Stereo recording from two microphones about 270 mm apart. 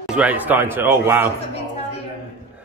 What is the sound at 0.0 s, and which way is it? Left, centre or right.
A man's voice, centre.